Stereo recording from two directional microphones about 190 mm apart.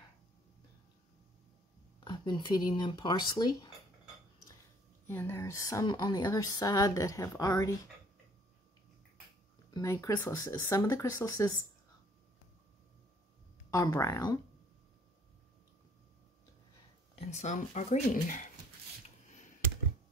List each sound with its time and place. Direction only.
2.0 s a sound: 20° left (ahead or behind)
2.8 s speech: 25° left (ahead or behind)
5.0 s a woman's voice: 10° left (ahead or behind)
9.8 s a woman's voice: 15° left (ahead or behind)
13.7 s speech: 20° left (ahead or behind)
17.1 s speech: 35° left (ahead or behind)